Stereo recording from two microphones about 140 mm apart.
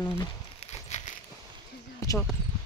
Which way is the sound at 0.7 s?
55° left (ahead or behind).